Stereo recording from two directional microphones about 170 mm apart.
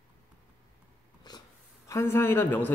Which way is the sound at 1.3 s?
25° left (ahead or behind).